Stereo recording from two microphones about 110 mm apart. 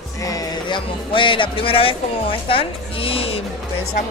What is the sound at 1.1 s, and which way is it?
A woman's voice, 50° left (ahead or behind).